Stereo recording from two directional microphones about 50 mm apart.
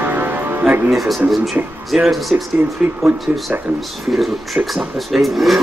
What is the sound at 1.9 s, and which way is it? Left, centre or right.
Speech, centre.